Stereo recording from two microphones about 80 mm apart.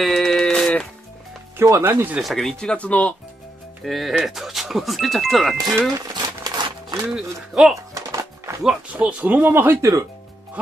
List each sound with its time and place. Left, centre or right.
0.0 s music: centre
1.6 s speech: right
2.1 s speech: centre
3.8 s speech: centre
5.8 s vehicle: right
7.2 s speech: centre
7.9 s music: right
8.9 s speech: centre
9.8 s speech: right